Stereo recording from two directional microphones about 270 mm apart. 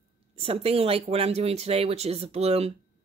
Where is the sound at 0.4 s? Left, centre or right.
Right.